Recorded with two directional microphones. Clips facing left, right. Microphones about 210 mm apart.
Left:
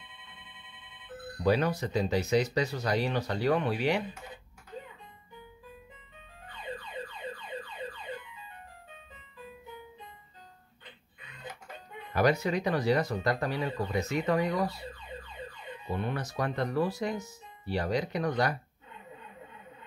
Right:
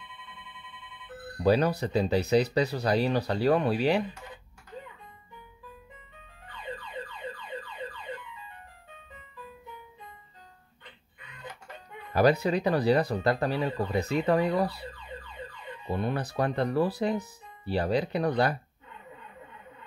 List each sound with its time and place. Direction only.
1.4 s speech: 35° right (ahead or behind)
12.1 s speech: 35° right (ahead or behind)
16.0 s speech: 35° right (ahead or behind)